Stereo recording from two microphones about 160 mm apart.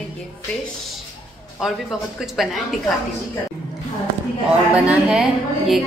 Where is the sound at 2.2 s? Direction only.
Centre (ahead or behind).